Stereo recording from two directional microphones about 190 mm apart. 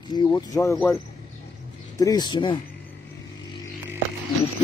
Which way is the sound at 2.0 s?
20° left (ahead or behind).